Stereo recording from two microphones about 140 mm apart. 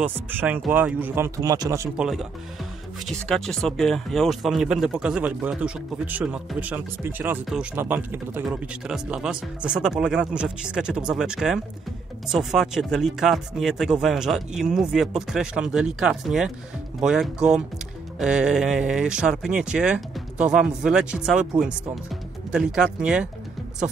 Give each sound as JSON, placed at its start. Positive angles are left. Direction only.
{"t": 0.0, "sound": "speech", "side_deg": -15}
{"t": 2.0, "sound": "speech", "side_deg": 0}
{"t": 8.5, "sound": "speech", "side_deg": -5}